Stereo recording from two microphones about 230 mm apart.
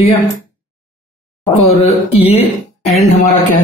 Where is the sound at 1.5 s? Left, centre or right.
Left.